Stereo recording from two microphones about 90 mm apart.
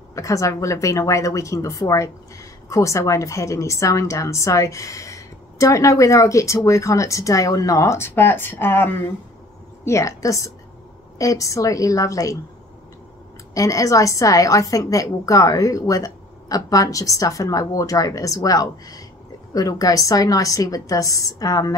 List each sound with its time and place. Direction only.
0.1 s a woman's voice: 35° left (ahead or behind)
9.8 s a woman's voice: 35° left (ahead or behind)
13.6 s a woman's voice: 40° left (ahead or behind)